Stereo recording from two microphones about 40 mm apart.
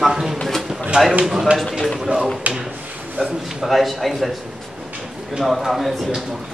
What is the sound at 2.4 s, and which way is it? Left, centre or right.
Speech, right.